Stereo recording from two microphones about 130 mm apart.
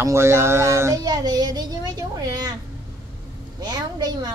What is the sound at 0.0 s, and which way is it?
A child's voice, 20° right (ahead or behind).